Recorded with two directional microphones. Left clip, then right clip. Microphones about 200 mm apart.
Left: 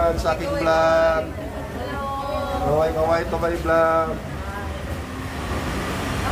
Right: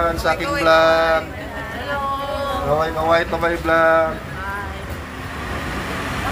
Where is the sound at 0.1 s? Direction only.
25° right (ahead or behind).